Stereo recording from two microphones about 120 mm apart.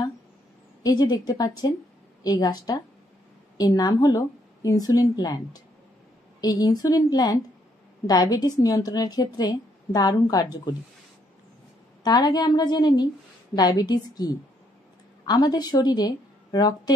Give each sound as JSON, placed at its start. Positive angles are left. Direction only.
{"t": 0.8, "sound": "a woman's voice", "side_deg": 30}
{"t": 12.0, "sound": "a woman's voice", "side_deg": 35}